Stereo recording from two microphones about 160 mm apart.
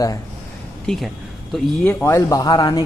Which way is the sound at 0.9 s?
5° left (ahead or behind).